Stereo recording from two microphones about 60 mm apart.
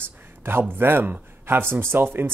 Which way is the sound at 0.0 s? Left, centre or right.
Right.